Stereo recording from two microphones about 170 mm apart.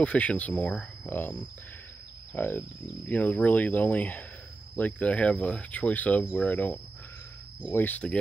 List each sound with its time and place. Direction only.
0.0 s speech: 5° left (ahead or behind)